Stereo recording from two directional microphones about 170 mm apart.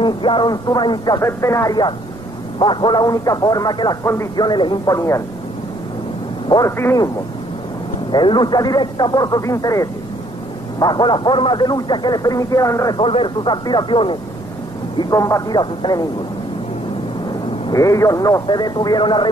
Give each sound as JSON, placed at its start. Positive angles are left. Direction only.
{"t": 0.0, "sound": "speech", "side_deg": 30}
{"t": 6.5, "sound": "speech", "side_deg": 20}
{"t": 8.1, "sound": "speech", "side_deg": 25}
{"t": 17.3, "sound": "speech", "side_deg": 20}